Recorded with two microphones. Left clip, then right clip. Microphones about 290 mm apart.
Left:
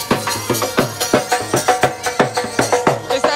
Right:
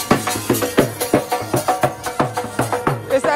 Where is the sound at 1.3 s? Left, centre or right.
Left.